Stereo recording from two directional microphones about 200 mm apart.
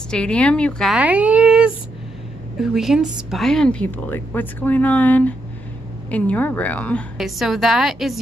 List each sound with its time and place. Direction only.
0.1 s a woman's voice: 5° left (ahead or behind)